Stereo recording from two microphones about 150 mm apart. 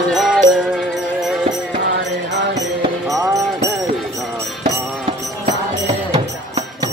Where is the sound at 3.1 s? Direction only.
20° right (ahead or behind).